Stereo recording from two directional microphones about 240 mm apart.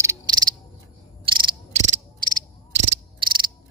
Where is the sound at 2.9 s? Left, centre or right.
Centre.